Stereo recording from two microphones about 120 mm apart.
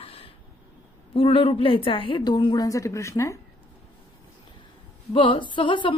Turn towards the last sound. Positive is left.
turn(degrees=45)  # may be behind; listen again after turning